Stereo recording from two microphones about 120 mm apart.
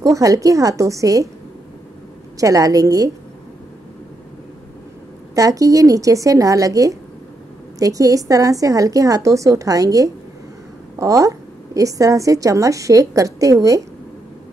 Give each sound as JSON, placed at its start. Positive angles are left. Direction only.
{"t": 0.0, "sound": "a woman's voice", "side_deg": -30}
{"t": 2.4, "sound": "a woman's voice", "side_deg": -30}
{"t": 5.3, "sound": "a woman's voice", "side_deg": -30}